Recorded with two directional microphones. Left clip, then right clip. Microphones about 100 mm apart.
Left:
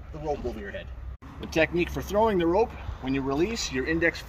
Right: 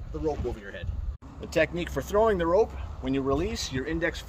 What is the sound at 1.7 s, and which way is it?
Speech, 45° right (ahead or behind).